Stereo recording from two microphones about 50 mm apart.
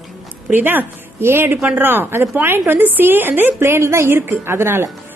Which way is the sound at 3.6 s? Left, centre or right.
Right.